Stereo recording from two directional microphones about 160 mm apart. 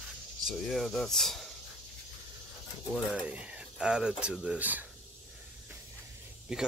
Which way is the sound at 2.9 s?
5° right (ahead or behind).